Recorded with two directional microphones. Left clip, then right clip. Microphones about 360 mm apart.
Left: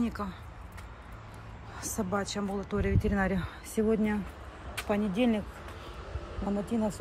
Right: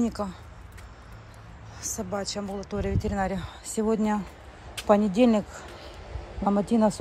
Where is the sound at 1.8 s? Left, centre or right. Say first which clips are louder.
Right 1 dB; centre.